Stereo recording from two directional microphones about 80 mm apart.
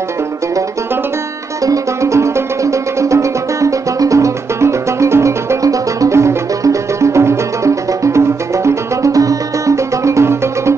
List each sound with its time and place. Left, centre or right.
1.7 s music: right